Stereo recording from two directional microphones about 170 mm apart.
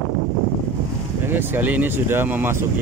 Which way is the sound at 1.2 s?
10° right (ahead or behind).